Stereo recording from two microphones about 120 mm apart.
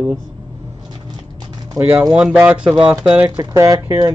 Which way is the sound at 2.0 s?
10° right (ahead or behind).